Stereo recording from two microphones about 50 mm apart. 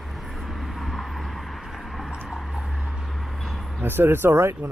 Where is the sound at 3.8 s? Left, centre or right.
Right.